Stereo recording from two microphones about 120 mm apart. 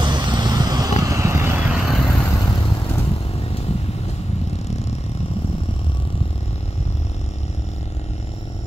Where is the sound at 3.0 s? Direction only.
60° left (ahead or behind).